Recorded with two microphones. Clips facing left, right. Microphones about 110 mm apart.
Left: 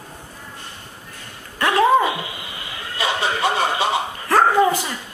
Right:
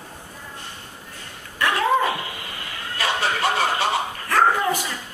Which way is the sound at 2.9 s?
Centre (ahead or behind).